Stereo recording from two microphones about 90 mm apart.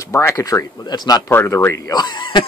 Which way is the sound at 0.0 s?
30° left (ahead or behind).